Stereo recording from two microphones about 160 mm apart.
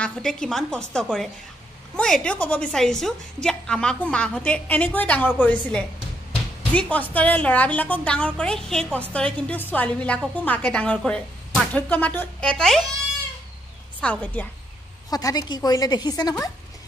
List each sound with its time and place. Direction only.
0.0 s a woman's voice: 5° left (ahead or behind)
14.0 s a woman's voice: 10° left (ahead or behind)
15.0 s a woman's voice: 25° left (ahead or behind)